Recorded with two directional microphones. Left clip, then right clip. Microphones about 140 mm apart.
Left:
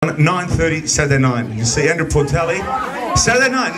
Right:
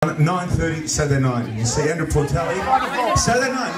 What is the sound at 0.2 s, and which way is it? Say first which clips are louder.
A man's voice: left 5 dB; 5° left (ahead or behind).